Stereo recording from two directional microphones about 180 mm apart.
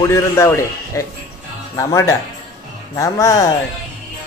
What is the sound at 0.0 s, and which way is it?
A man's voice, 15° left (ahead or behind).